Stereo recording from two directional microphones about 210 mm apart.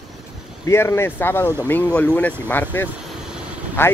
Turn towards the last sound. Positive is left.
turn(degrees=10)  # may be behind; listen again after turning